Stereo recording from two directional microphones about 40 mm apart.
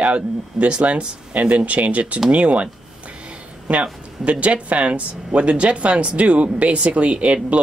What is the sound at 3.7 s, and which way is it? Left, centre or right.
Speech, right.